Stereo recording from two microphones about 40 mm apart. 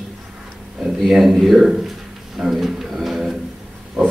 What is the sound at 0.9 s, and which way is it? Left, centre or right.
Speech, centre.